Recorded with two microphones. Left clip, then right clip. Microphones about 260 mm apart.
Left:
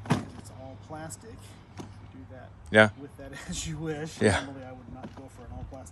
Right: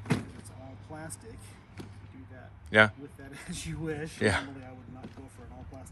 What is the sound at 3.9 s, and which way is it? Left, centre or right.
Speech, centre.